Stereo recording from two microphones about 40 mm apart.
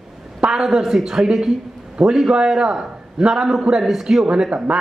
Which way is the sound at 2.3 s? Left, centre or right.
Centre.